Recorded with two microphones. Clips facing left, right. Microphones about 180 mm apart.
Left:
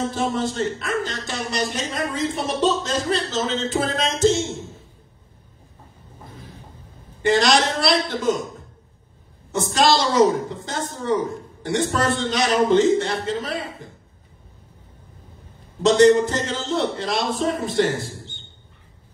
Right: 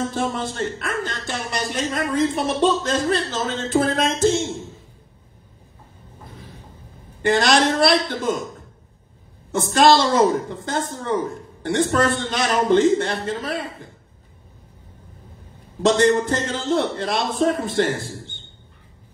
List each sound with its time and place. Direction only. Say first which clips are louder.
0.1 s speech: left 1 dB; 50° right (ahead or behind)
7.2 s a woman's voice: even; 55° right (ahead or behind)
9.5 s speech: right 3 dB; 55° right (ahead or behind)
15.8 s speech: left 3 dB; 55° right (ahead or behind)